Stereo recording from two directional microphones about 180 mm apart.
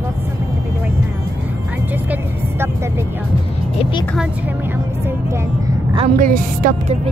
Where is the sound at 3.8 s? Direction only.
30° left (ahead or behind).